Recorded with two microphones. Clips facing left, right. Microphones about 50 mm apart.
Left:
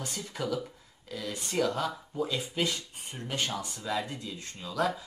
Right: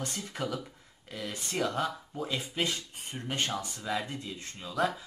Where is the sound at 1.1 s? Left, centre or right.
Right.